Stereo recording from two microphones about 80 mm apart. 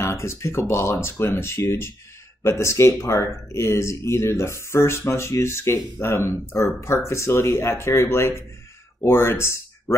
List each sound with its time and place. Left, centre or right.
0.0 s speech: left